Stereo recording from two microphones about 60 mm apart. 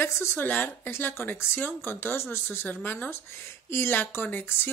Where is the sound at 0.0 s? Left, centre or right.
Left.